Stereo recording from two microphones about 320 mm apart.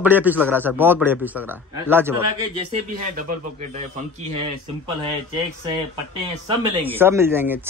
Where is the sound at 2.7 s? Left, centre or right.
Right.